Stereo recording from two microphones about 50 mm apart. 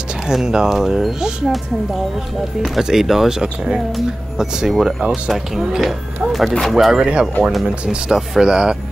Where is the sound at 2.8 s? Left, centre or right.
Centre.